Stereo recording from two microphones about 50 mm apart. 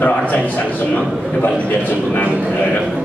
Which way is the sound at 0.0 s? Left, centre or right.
Left.